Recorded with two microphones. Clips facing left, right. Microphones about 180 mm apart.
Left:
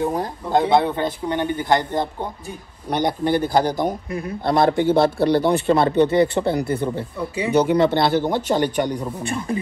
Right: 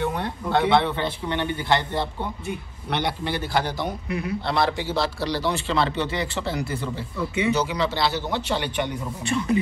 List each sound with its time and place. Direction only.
0.0 s a man's voice: 35° left (ahead or behind); by 7.1 s 55° left (ahead or behind)
7.2 s speech: 35° left (ahead or behind)
7.5 s a man's voice: 55° left (ahead or behind)
9.0 s speech: 30° left (ahead or behind)